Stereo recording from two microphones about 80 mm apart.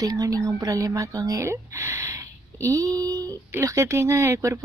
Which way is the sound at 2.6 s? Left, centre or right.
Right.